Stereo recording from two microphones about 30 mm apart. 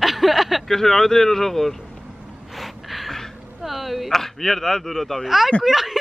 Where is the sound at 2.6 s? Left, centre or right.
Centre.